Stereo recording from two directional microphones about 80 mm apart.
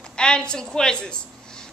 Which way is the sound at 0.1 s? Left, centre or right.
Centre.